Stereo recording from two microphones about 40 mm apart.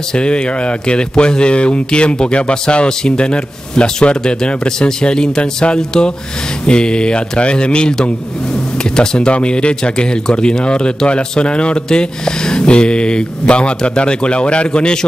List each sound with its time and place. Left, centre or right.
0.1 s a man's voice: left